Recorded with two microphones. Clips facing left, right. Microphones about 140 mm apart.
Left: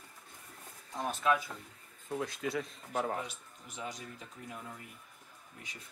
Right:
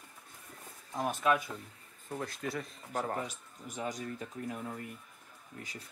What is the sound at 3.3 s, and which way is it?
Speech, 45° right (ahead or behind).